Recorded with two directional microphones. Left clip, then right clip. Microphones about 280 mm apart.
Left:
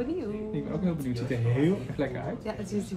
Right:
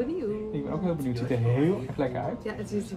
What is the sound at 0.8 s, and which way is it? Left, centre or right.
Speech, centre.